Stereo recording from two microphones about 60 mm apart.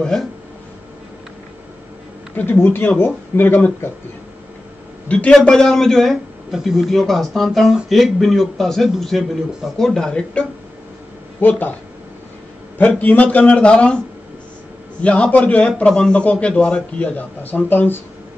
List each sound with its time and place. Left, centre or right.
2.3 s speech: left
5.0 s a man's voice: centre
11.4 s a man's voice: left
12.7 s a man's voice: left
15.0 s a man's voice: left